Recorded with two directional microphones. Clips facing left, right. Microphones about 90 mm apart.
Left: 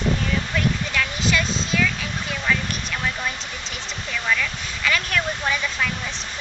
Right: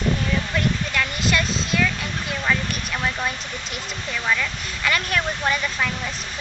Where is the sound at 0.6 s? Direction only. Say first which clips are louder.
Left 1 dB; centre (ahead or behind).